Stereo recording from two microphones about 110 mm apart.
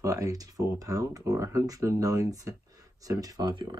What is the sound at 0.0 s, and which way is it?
Speech, 30° right (ahead or behind).